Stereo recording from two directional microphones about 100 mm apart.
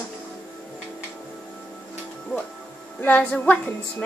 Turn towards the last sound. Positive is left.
turn(degrees=15)  # may be behind; listen again after turning